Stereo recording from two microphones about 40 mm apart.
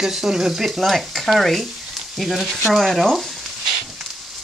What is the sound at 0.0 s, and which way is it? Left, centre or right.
Stir, centre.